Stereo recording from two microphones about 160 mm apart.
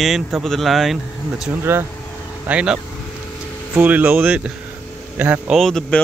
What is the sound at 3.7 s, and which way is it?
Speech, 10° right (ahead or behind).